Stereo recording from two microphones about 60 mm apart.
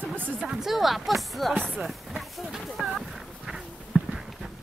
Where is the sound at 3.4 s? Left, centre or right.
Centre.